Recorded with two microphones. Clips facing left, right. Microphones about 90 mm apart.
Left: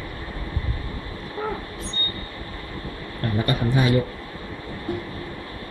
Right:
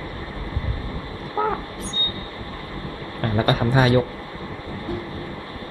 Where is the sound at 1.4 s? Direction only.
70° right (ahead or behind).